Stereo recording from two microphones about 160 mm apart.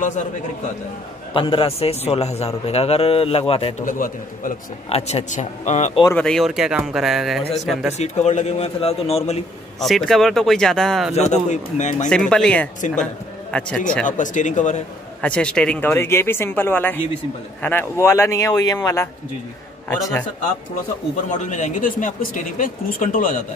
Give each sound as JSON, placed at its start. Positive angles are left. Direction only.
{"t": 1.3, "sound": "a man's voice", "side_deg": 35}
{"t": 3.8, "sound": "a man's voice", "side_deg": 55}
{"t": 4.8, "sound": "speech", "side_deg": 40}
{"t": 6.1, "sound": "speech", "side_deg": 5}
{"t": 8.0, "sound": "a man's voice", "side_deg": 45}
{"t": 9.8, "sound": "speech", "side_deg": 0}
{"t": 11.1, "sound": "speech", "side_deg": 45}
{"t": 12.1, "sound": "a man's voice", "side_deg": 5}
{"t": 14.0, "sound": "speech", "side_deg": 50}
{"t": 15.2, "sound": "speech", "side_deg": 5}
{"t": 21.3, "sound": "speech", "side_deg": 50}